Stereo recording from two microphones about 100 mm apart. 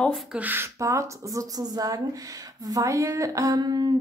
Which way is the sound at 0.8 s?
30° right (ahead or behind).